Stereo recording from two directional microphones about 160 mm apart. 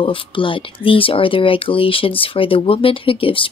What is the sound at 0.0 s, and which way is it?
Speech, 30° left (ahead or behind).